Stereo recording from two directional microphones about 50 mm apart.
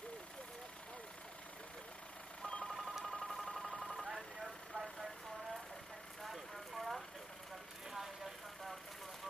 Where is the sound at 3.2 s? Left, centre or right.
Centre.